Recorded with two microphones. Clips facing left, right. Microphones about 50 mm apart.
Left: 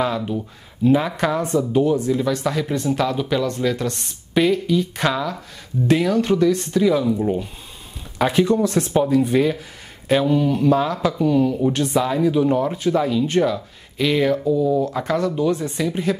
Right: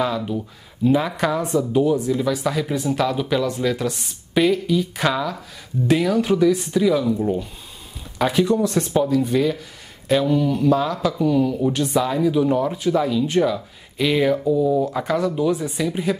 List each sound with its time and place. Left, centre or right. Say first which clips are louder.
0.0 s speech: left 1 dB; centre
8.9 s speech: left 2 dB; centre